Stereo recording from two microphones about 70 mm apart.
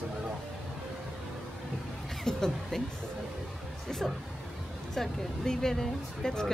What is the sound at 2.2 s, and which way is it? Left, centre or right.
Speech, centre.